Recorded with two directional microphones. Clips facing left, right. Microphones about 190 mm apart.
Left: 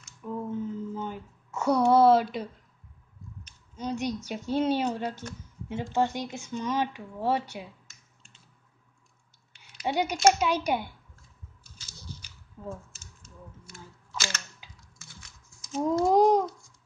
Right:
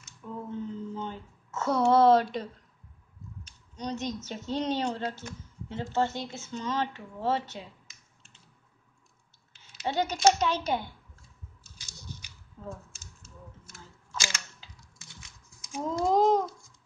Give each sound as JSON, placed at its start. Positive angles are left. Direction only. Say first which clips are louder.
{"t": 0.2, "sound": "a sound", "louder": "left 4 dB", "side_deg": 10}
{"t": 3.7, "sound": "speech", "louder": "left 3 dB", "side_deg": 10}
{"t": 9.6, "sound": "speech", "louder": "left 1 dB", "side_deg": 15}
{"t": 12.6, "sound": "speech", "louder": "left 2 dB", "side_deg": 10}
{"t": 13.0, "sound": "finger snapping", "louder": "left 1 dB", "side_deg": -10}
{"t": 14.6, "sound": "typing", "louder": "left 1 dB", "side_deg": 15}
{"t": 15.0, "sound": "a sound", "louder": "left 1 dB", "side_deg": -20}
{"t": 15.8, "sound": "speech", "louder": "left 3 dB", "side_deg": 15}